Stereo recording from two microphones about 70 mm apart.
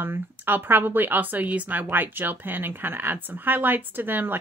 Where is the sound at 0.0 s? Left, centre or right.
Right.